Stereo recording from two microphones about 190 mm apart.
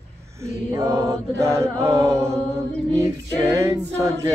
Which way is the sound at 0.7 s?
15° right (ahead or behind).